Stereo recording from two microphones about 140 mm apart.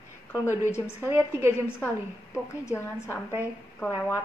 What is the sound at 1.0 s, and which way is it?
Speech, 20° right (ahead or behind).